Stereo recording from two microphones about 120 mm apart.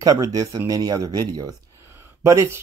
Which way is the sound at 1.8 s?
20° right (ahead or behind).